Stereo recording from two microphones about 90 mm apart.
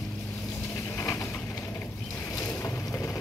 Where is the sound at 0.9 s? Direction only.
30° left (ahead or behind).